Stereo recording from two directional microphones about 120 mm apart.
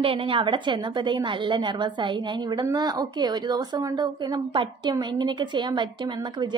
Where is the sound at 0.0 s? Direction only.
50° right (ahead or behind).